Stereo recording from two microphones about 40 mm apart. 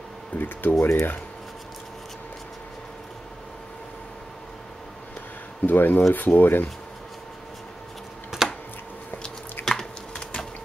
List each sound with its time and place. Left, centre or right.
0.4 s speech: left
0.7 s speech: left
5.7 s speech: left
8.3 s a sound: centre
9.7 s typing: centre